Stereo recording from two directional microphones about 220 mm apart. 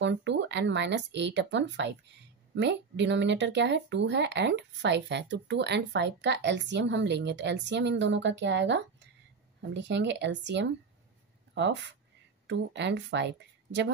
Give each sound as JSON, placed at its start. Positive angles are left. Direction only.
{"t": 0.0, "sound": "speech", "side_deg": -55}